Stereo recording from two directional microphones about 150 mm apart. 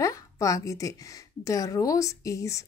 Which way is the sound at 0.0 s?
20° left (ahead or behind).